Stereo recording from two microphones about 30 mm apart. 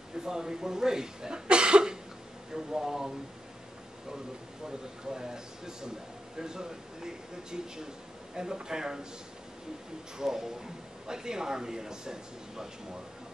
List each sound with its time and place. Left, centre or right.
0.2 s a man's voice: centre
1.5 s cough: right
2.5 s speech: centre
4.6 s a man's voice: centre
10.1 s a man's voice: centre